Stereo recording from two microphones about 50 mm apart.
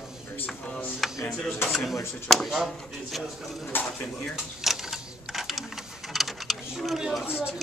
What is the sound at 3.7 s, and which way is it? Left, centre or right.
Speech, left.